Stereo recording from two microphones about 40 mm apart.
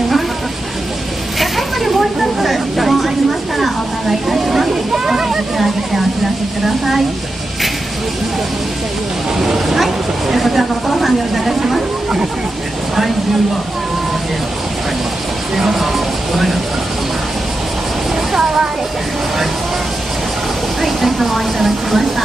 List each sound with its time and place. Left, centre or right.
1.4 s vehicle: centre
9.4 s a sound: centre
15.5 s speech: centre
18.3 s speech: centre
20.8 s speech: centre